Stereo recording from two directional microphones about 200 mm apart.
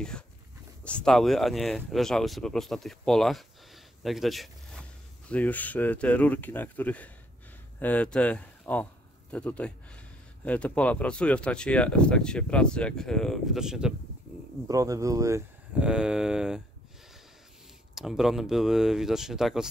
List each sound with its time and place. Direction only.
0.8 s speech: 5° left (ahead or behind)
14.7 s speech: 15° right (ahead or behind)
15.8 s speech: 5° right (ahead or behind)
17.9 s speech: centre (ahead or behind)